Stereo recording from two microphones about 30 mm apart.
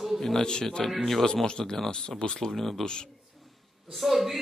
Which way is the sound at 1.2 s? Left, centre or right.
Left.